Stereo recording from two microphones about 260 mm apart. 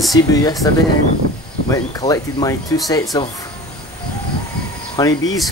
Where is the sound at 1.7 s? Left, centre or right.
Centre.